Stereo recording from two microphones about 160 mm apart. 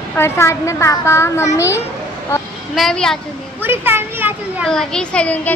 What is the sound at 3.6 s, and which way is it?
Speech, 15° right (ahead or behind).